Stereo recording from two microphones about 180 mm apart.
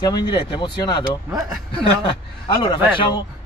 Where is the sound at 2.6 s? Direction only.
25° left (ahead or behind).